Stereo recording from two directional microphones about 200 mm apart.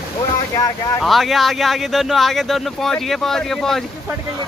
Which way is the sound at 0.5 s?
20° left (ahead or behind).